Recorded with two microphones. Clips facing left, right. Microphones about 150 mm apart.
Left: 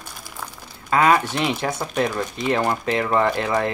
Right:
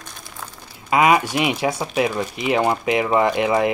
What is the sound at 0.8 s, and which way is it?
Speech, 10° right (ahead or behind).